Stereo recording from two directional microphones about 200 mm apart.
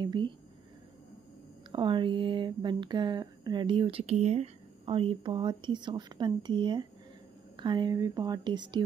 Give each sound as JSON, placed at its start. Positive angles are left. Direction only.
{"t": 0.0, "sound": "speech", "side_deg": -20}
{"t": 1.7, "sound": "speech", "side_deg": -25}